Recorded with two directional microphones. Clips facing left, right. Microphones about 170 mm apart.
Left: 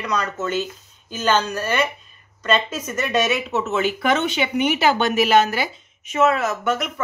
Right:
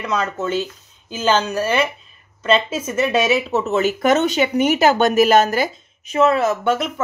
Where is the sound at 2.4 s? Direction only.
30° right (ahead or behind).